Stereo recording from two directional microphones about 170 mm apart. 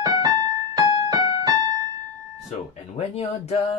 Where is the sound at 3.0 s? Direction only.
40° left (ahead or behind).